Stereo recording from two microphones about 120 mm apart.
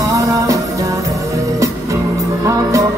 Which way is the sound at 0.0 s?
30° right (ahead or behind).